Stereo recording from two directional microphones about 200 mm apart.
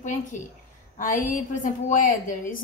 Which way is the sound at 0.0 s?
40° left (ahead or behind).